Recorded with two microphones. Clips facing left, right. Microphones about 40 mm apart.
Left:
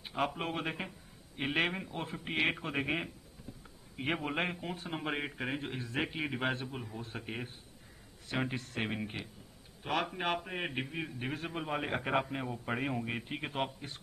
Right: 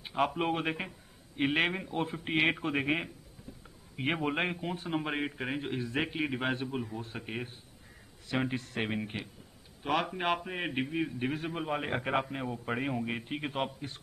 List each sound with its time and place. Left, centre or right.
0.1 s a man's voice: centre
2.2 s speech: centre
2.5 s a man's voice: centre
10.4 s a man's voice: centre